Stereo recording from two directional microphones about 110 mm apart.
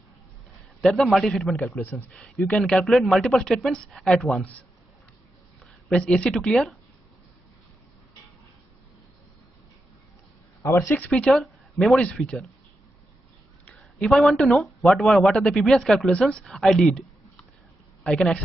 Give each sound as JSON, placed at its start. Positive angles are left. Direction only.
{"t": 0.7, "sound": "speech", "side_deg": 5}
{"t": 1.6, "sound": "speech", "side_deg": 15}
{"t": 10.6, "sound": "speech", "side_deg": 25}
{"t": 11.1, "sound": "speech", "side_deg": 10}
{"t": 13.7, "sound": "speech", "side_deg": 5}